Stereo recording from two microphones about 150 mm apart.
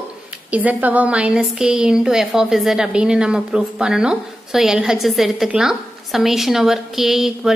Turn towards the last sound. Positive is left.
turn(degrees=-5)  # may be behind; listen again after turning